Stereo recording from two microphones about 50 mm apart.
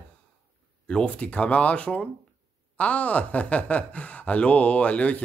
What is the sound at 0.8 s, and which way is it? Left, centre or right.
A man's voice, left.